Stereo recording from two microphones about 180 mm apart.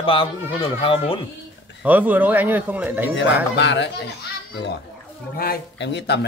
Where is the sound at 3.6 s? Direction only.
75° left (ahead or behind).